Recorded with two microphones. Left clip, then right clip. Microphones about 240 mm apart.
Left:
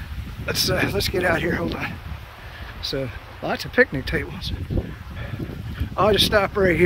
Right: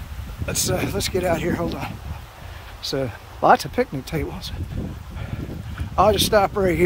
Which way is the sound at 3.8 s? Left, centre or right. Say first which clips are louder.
Left 5 dB; centre.